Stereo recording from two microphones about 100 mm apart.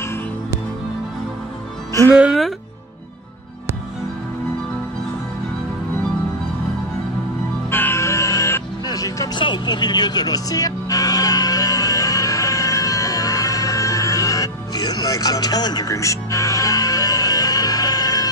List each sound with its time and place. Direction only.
7.7 s music: 25° left (ahead or behind)
9.4 s music: 50° left (ahead or behind)